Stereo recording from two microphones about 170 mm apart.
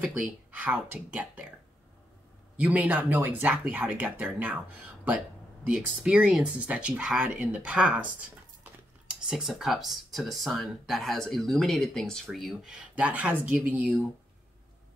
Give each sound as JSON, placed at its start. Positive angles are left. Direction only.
{"t": 0.0, "sound": "speech", "side_deg": -5}
{"t": 2.5, "sound": "speech", "side_deg": -10}
{"t": 5.7, "sound": "speech", "side_deg": -5}